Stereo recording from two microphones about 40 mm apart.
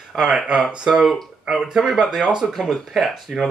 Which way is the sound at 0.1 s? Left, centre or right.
Centre.